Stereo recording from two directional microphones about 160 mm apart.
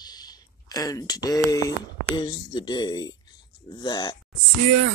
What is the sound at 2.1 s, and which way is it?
Speech, 30° left (ahead or behind).